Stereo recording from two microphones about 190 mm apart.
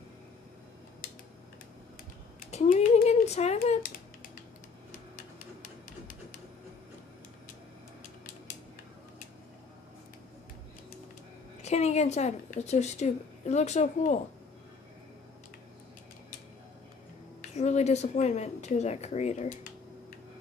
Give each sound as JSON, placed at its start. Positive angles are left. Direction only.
{"t": 2.5, "sound": "a woman's voice", "side_deg": 40}
{"t": 4.9, "sound": "typewriter", "side_deg": 45}
{"t": 11.6, "sound": "a woman's voice", "side_deg": 35}
{"t": 17.6, "sound": "a woman's voice", "side_deg": 35}